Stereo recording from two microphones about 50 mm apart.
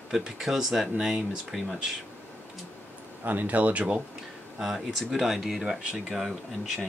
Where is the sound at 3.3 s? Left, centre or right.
Right.